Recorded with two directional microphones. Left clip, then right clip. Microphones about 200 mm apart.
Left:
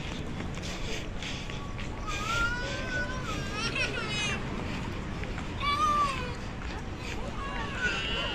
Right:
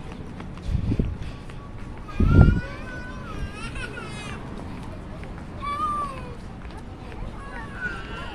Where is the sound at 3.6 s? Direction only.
60° right (ahead or behind).